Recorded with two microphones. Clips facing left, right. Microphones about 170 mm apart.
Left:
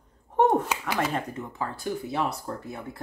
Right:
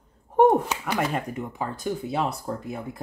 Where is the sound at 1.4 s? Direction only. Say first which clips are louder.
Right 2 dB; 20° right (ahead or behind).